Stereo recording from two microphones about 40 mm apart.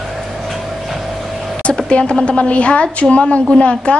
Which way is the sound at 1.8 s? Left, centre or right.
Left.